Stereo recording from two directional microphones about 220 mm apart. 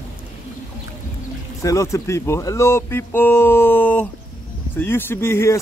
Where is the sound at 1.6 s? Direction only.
15° left (ahead or behind).